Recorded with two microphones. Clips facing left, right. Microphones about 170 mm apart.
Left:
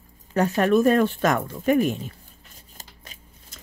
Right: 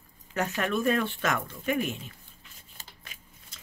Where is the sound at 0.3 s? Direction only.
35° left (ahead or behind).